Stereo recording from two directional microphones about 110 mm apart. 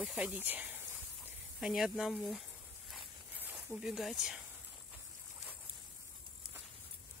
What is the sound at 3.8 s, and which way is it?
Speech, 5° right (ahead or behind).